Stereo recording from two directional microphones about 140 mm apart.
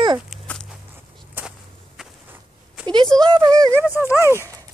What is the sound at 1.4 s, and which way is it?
Whip, 10° right (ahead or behind).